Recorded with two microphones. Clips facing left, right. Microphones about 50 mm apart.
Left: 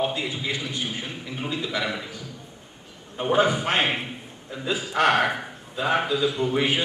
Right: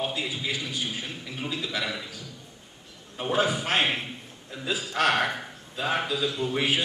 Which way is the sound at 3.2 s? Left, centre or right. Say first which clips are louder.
Left 4 dB; centre.